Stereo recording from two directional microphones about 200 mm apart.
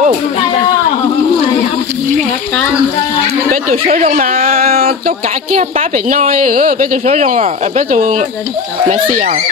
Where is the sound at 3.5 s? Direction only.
45° right (ahead or behind).